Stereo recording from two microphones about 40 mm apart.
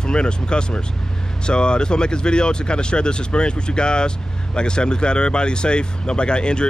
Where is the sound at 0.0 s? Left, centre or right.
Left.